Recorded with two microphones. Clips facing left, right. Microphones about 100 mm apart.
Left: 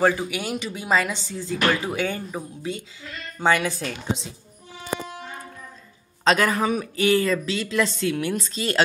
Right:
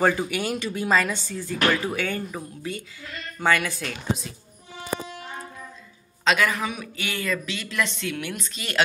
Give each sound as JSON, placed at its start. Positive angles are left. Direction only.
{"t": 0.0, "sound": "speech", "side_deg": 5}
{"t": 6.2, "sound": "a man's voice", "side_deg": 40}